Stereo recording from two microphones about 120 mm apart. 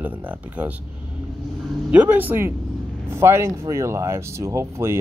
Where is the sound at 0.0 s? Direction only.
15° right (ahead or behind).